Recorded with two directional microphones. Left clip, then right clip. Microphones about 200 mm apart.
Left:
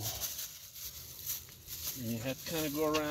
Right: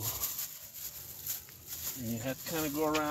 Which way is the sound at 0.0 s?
10° right (ahead or behind).